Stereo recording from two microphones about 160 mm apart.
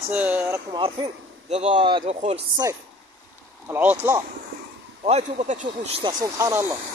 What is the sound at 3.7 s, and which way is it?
Speech, 10° right (ahead or behind).